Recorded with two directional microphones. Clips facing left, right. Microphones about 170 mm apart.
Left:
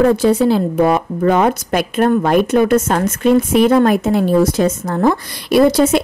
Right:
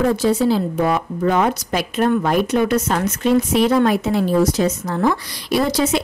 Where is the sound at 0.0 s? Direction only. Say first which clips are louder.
Left 5 dB; 60° left (ahead or behind).